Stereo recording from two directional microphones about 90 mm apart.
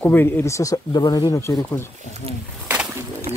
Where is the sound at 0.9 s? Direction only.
50° left (ahead or behind).